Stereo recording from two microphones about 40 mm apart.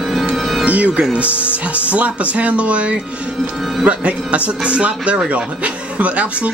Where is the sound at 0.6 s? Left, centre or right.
Right.